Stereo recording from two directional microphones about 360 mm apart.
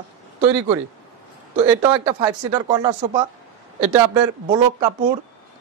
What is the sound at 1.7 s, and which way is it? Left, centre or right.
A man's voice, centre.